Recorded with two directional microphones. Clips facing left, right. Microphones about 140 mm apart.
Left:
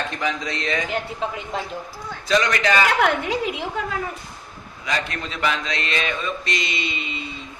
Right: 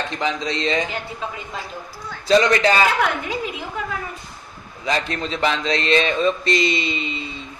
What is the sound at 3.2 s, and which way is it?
Speech, 85° left.